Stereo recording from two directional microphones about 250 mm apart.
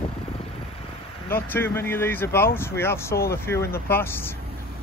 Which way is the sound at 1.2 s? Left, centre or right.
Centre.